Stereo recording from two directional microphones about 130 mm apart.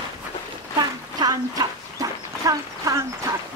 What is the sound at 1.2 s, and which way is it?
Dog, 30° right (ahead or behind).